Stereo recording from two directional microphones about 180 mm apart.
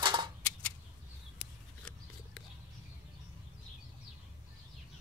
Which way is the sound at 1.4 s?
5° left (ahead or behind).